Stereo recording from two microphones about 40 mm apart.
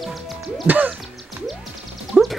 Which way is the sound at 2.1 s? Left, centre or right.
Right.